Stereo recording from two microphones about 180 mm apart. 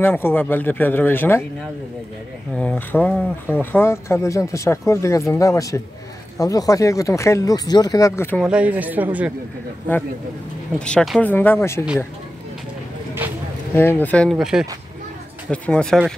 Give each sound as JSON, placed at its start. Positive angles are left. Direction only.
{"t": 0.0, "sound": "speech", "side_deg": 10}
{"t": 2.5, "sound": "speech", "side_deg": 5}
{"t": 8.4, "sound": "speech", "side_deg": -5}
{"t": 10.8, "sound": "speech", "side_deg": 5}
{"t": 13.7, "sound": "speech", "side_deg": 10}